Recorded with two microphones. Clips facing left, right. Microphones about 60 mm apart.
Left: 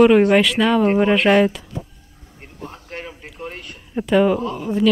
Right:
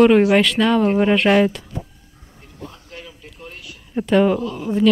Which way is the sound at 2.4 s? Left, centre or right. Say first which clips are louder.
Left 2 dB; left.